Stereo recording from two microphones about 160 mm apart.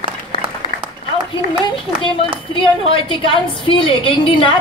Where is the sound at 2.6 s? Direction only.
35° left (ahead or behind).